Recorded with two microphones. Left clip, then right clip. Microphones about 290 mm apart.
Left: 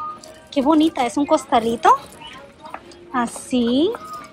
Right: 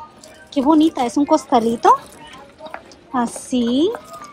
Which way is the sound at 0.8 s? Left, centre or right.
Centre.